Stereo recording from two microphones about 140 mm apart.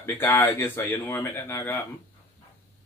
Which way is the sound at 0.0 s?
15° left (ahead or behind).